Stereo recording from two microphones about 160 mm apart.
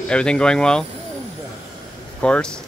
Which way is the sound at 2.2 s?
5° left (ahead or behind).